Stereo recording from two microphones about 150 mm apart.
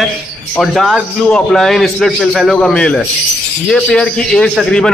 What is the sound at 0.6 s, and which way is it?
A man's voice, centre (ahead or behind).